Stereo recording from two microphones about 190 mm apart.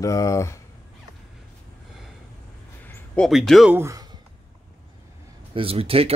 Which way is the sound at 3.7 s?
15° right (ahead or behind).